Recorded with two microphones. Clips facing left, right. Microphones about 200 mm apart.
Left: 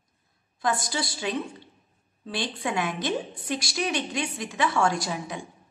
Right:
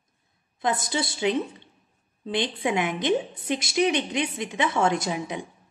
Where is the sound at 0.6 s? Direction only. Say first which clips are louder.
Right 2 dB; 20° right (ahead or behind).